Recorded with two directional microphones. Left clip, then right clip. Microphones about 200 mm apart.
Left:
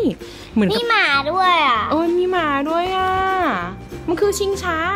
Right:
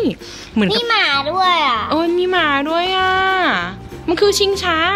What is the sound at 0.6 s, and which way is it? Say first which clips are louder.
A child's voice: right 1 dB; 5° right (ahead or behind).